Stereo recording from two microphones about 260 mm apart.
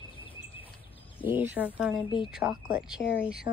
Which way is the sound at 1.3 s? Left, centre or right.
Centre.